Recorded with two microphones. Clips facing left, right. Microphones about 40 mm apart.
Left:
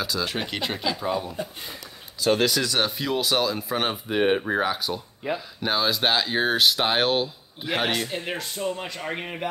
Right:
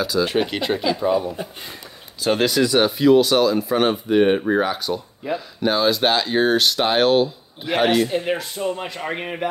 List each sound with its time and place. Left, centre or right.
0.2 s speech: centre
2.2 s speech: right
2.5 s speech: centre